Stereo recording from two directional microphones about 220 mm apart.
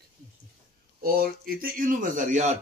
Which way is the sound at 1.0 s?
40° right (ahead or behind).